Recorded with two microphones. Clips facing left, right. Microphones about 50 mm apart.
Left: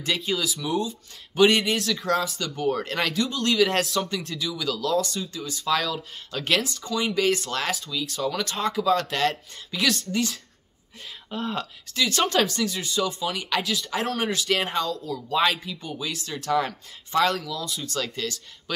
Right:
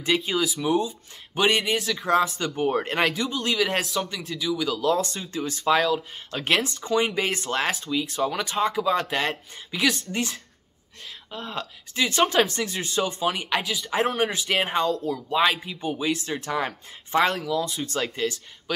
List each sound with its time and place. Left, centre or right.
0.0 s speech: centre
2.4 s speech: right
4.9 s speech: right
6.3 s speech: right
11.2 s speech: centre
11.9 s speech: right
12.4 s speech: right
13.6 s speech: centre; by 15.3 s right
15.3 s speech: centre
15.6 s speech: right